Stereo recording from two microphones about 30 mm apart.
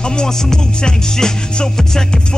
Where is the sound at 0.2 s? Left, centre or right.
Left.